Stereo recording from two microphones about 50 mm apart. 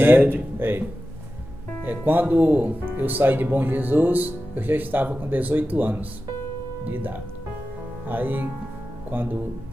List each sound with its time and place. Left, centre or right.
0.0 s speech: right
1.9 s speech: right